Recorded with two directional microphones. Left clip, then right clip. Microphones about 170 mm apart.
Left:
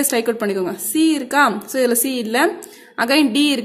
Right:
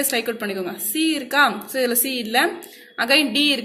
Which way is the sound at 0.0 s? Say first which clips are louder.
Left 4 dB; 50° left (ahead or behind).